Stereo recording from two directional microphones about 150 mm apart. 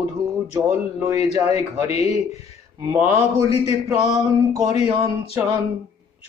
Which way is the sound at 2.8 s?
20° right (ahead or behind).